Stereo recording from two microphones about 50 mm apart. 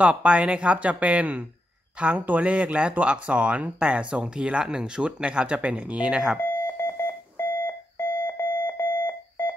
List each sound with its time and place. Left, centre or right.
0.0 s speech: right
6.8 s beep: left
8.4 s alarm: left